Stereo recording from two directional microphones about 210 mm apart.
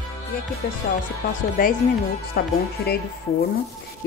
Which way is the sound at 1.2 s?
40° left (ahead or behind).